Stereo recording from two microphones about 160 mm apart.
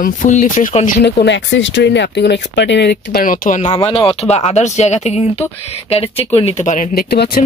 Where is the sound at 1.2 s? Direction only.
90° left; by 3.7 s 50° left (ahead or behind).